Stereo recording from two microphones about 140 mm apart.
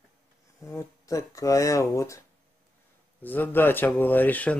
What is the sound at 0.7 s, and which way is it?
Speech, 20° left (ahead or behind).